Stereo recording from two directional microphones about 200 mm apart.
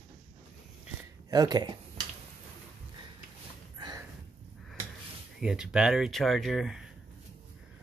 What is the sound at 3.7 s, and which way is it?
Gasp, 20° right (ahead or behind).